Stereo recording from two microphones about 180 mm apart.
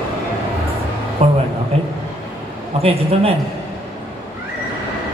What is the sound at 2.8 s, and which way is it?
Mantra, 30° right (ahead or behind).